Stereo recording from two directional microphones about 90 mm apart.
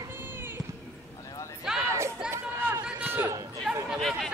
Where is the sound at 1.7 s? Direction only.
5° right (ahead or behind).